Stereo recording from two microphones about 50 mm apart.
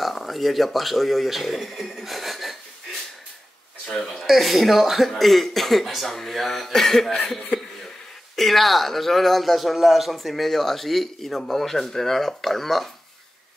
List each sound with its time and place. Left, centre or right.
0.0 s speech: centre
3.9 s speech: centre